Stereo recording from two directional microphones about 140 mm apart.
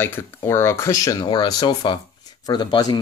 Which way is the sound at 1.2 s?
35° left (ahead or behind).